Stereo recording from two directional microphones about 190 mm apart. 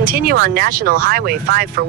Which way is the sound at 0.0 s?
50° right (ahead or behind).